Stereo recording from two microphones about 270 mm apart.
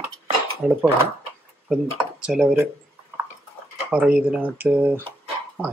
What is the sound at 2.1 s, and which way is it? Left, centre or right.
Speech, centre.